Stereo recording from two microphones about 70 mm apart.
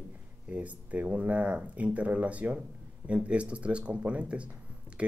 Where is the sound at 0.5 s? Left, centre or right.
Right.